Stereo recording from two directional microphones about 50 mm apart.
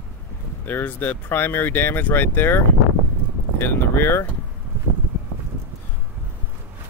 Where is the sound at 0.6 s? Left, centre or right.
Left.